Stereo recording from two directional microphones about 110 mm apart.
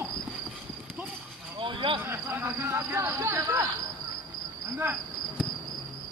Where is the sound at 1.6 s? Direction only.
50° right (ahead or behind).